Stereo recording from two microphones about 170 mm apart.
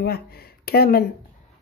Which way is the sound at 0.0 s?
65° left (ahead or behind).